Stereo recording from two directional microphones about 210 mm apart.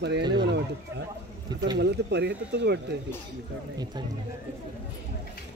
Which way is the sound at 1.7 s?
55° right (ahead or behind).